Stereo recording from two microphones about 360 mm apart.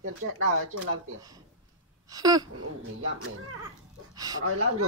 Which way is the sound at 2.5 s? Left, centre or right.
Right.